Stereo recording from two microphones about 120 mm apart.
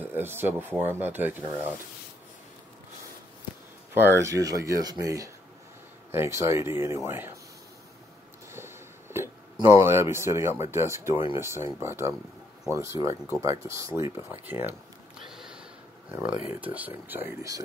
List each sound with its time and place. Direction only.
0.0 s speech: 15° right (ahead or behind)
3.9 s speech: 20° right (ahead or behind)
8.5 s a sound: 20° right (ahead or behind)
10.6 s speech: 20° right (ahead or behind)
15.2 s a sound: 5° right (ahead or behind)
16.1 s speech: 10° right (ahead or behind)